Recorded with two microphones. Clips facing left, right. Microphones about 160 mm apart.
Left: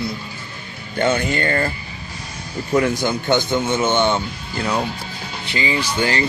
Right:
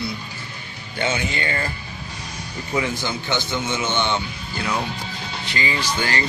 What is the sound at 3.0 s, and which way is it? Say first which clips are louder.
Speech: left 7 dB; 50° left (ahead or behind).